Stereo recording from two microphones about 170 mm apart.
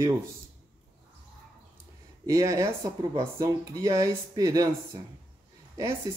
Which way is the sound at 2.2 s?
20° right (ahead or behind).